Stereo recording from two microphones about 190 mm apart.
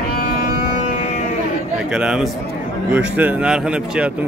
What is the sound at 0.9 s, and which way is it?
Music, 40° left (ahead or behind).